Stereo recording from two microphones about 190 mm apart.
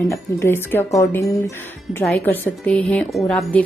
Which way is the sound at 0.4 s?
10° left (ahead or behind).